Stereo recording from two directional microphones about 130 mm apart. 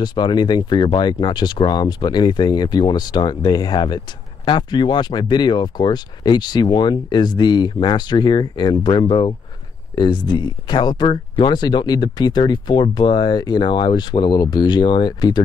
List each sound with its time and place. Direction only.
0.0 s speech: 35° left (ahead or behind)